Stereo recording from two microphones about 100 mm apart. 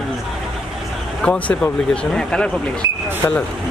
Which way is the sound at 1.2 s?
10° left (ahead or behind).